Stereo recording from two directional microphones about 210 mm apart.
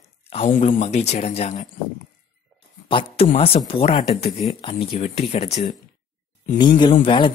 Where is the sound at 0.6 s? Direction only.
30° left (ahead or behind).